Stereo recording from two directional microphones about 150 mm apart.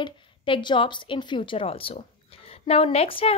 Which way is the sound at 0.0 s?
30° left (ahead or behind).